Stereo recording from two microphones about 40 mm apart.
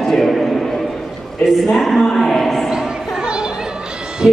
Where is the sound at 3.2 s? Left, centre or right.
Right.